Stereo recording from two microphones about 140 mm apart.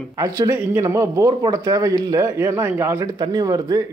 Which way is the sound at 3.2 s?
30° right (ahead or behind).